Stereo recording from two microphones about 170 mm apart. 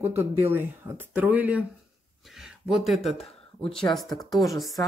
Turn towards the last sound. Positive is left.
turn(degrees=0)  # may be behind; listen again after turning